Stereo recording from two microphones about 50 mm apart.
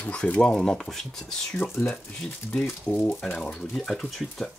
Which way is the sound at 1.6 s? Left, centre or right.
Left.